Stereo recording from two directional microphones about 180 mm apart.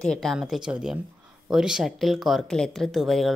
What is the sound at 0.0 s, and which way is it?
A woman's voice, centre (ahead or behind).